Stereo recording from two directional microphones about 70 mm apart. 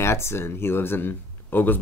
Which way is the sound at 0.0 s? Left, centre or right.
Left.